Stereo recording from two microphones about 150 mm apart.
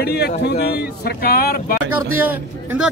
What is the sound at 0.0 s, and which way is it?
Speech, 90° left.